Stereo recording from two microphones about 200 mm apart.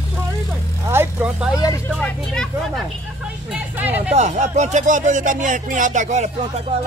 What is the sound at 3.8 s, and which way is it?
Speech, 10° right (ahead or behind).